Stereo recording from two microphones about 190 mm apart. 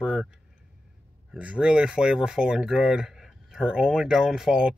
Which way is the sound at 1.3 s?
5° right (ahead or behind).